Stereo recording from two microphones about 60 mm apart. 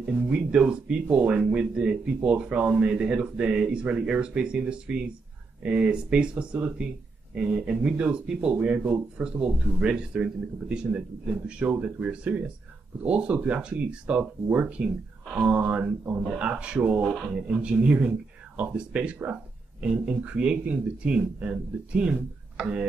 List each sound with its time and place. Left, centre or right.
0.5 s speech: centre
17.1 s speech: centre